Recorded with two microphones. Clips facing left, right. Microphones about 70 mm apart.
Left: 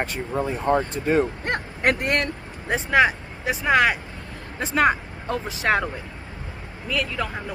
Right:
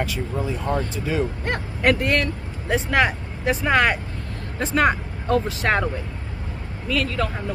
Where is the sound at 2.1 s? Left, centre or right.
Left.